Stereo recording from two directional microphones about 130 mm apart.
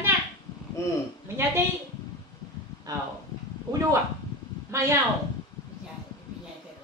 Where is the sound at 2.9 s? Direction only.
30° right (ahead or behind).